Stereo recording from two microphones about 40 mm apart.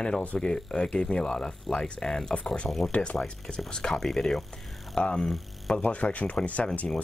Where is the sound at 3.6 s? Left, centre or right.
Centre.